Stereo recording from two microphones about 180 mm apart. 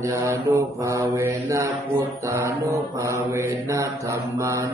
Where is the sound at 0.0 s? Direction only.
15° right (ahead or behind).